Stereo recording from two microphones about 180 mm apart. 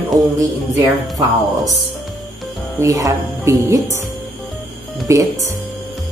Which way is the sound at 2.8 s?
20° right (ahead or behind).